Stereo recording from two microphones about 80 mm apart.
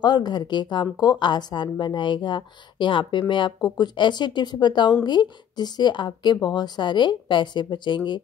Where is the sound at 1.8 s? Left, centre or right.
Left.